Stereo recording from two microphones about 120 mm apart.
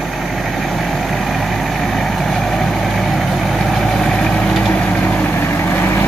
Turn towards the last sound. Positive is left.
turn(degrees=15)  # may be behind; listen again after turning